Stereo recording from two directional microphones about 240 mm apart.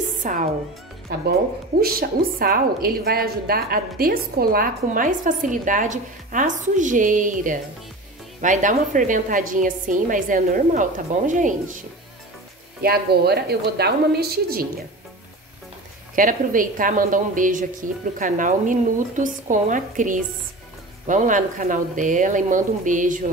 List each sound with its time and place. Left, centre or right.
0.2 s speech: right
1.8 s a woman's voice: right
12.8 s a woman's voice: right
16.2 s a woman's voice: right